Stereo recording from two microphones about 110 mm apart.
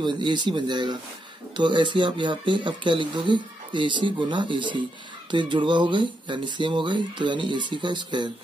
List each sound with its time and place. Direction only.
0.0 s speech: 40° right (ahead or behind)